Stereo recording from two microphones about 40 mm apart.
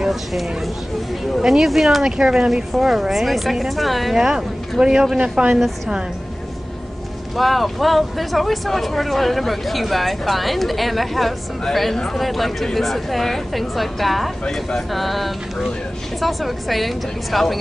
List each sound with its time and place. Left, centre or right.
0.0 s speech: centre
2.5 s speech: centre
4.2 s a woman's voice: centre
7.3 s speech: centre